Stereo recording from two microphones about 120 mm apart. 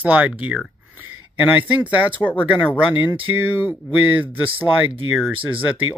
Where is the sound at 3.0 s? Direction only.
15° right (ahead or behind).